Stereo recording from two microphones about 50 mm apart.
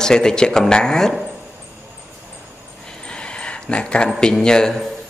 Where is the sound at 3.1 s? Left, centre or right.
Left.